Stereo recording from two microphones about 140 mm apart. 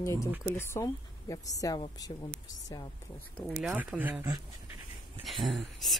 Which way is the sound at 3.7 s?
10° right (ahead or behind).